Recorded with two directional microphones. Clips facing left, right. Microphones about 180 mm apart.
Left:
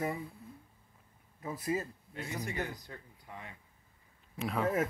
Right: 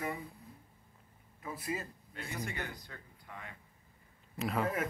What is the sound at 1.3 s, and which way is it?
Speech, 40° left (ahead or behind).